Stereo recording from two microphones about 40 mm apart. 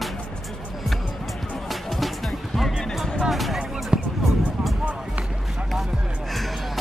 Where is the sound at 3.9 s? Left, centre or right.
Centre.